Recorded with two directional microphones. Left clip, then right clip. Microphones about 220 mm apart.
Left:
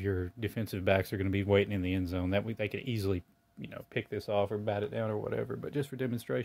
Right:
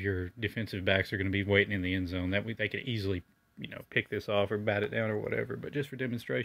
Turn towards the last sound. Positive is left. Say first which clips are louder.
# even
turn(degrees=10)  # may be behind; listen again after turning